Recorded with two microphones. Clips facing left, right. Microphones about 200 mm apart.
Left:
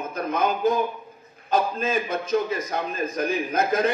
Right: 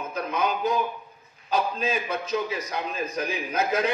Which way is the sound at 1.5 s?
50° left (ahead or behind).